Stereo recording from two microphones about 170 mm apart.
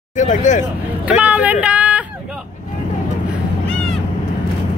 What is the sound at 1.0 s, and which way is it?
Vehicle, 10° right (ahead or behind).